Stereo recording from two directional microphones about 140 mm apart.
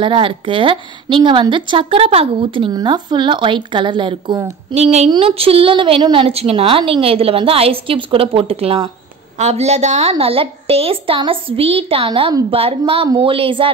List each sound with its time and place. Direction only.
0.0 s a woman's voice: 40° right (ahead or behind)
4.7 s a woman's voice: 50° right (ahead or behind); by 12.4 s 30° right (ahead or behind)
12.4 s a woman's voice: 45° right (ahead or behind)